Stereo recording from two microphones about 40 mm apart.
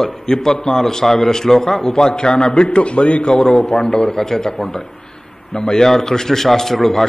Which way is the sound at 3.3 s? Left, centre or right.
Centre.